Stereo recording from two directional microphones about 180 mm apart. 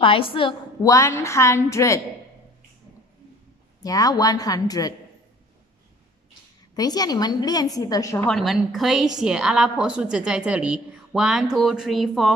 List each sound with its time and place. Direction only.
0.0 s a woman's voice: 30° left (ahead or behind)
3.8 s a woman's voice: 20° left (ahead or behind)
6.7 s a woman's voice: 20° left (ahead or behind)
8.3 s a woman's voice: centre (ahead or behind)